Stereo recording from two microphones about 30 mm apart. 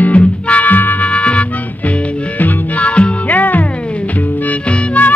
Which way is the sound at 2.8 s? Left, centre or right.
Left.